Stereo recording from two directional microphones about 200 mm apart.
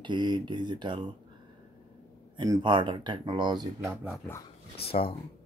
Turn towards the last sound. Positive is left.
turn(degrees=25)  # may be behind; listen again after turning